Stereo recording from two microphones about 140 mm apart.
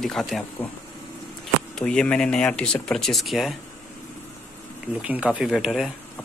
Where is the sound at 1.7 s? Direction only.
5° left (ahead or behind).